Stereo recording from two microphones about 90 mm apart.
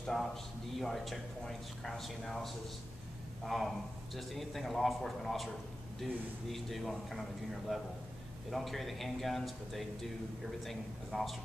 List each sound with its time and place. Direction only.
0.0 s a man's voice: 5° left (ahead or behind)
6.5 s a man's voice: centre (ahead or behind)